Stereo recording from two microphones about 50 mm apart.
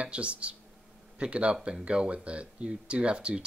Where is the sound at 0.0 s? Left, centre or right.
Right.